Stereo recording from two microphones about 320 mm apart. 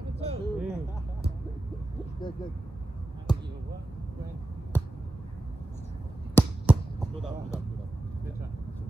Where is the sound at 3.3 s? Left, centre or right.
Centre.